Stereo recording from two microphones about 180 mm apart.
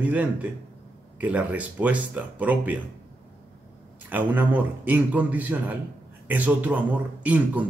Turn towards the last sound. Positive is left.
turn(degrees=-10)  # may be behind; listen again after turning